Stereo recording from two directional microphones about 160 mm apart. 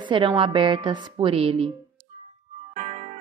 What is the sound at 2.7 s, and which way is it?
Music, 45° right (ahead or behind).